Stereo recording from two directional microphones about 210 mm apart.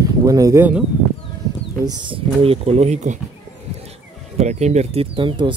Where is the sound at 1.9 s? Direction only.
25° right (ahead or behind).